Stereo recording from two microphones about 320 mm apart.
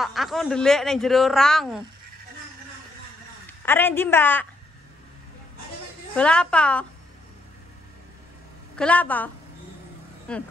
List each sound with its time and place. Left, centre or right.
0.0 s a woman's voice: centre
3.4 s a woman's voice: centre
6.1 s a woman's voice: centre
8.7 s a woman's voice: centre